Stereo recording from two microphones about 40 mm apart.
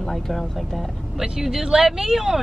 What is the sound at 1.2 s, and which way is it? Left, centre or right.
Speech, centre.